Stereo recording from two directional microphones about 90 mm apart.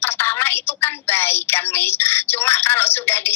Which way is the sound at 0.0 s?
25° left (ahead or behind).